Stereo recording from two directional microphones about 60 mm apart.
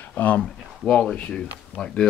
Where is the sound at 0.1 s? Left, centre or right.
Left.